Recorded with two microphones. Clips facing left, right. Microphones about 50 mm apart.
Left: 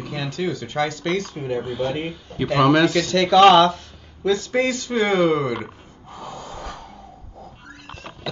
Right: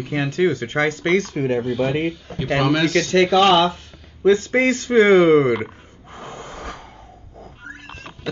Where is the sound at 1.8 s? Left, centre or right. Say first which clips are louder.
Right 4 dB; right.